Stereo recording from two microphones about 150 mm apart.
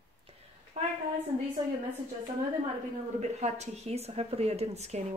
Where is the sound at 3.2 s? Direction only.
50° right (ahead or behind).